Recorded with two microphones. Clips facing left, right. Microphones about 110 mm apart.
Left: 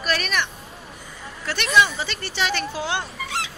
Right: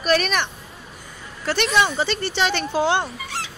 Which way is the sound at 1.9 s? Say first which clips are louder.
Right 5 dB; 30° right (ahead or behind).